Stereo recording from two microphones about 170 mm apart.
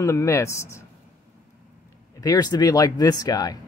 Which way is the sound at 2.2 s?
20° left (ahead or behind).